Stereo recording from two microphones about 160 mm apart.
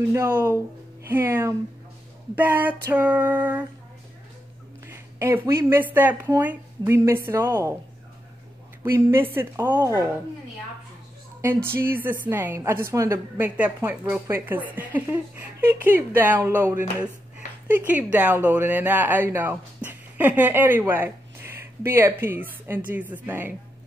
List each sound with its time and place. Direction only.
0.1 s speech: 20° right (ahead or behind)
4.8 s a woman's voice: 15° right (ahead or behind)
8.8 s speech: 15° right (ahead or behind)
11.4 s speech: 15° right (ahead or behind)